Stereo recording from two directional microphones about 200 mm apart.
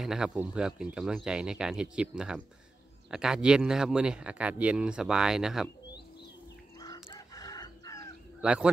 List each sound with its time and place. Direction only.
0.0 s speech: 5° right (ahead or behind)
6.8 s chicken: 20° left (ahead or behind)
8.4 s speech: 5° right (ahead or behind)